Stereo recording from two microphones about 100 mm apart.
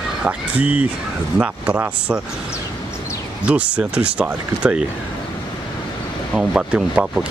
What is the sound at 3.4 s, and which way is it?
Speech, 15° right (ahead or behind).